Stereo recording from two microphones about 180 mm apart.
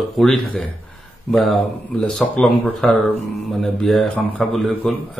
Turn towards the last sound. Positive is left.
turn(degrees=0)  # may be behind; listen again after turning